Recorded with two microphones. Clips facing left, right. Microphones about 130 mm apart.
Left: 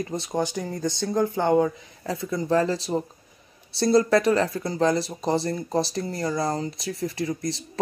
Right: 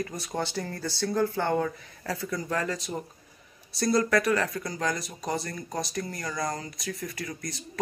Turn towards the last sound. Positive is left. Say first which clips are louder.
# left 4 dB
turn(degrees=25)  # may be behind; listen again after turning